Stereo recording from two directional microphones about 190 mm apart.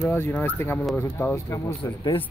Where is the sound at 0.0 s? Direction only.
10° left (ahead or behind).